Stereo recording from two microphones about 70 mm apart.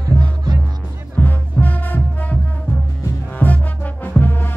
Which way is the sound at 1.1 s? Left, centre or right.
Left.